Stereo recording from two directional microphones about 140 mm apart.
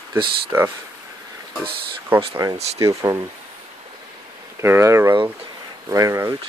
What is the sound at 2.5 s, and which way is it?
Speech, 50° right (ahead or behind).